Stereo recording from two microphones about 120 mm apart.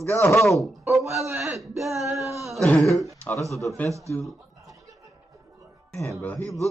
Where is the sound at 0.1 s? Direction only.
25° left (ahead or behind).